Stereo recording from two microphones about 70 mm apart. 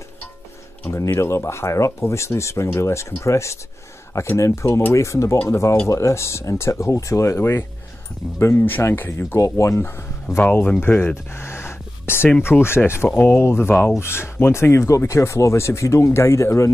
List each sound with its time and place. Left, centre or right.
0.8 s speech: left
9.4 s speech: left
9.8 s speech: left
10.4 s speech: left
10.8 s gasp: left
12.4 s speech: left